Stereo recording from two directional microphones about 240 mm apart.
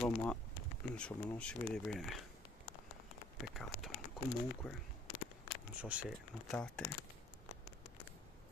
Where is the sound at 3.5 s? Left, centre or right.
Centre.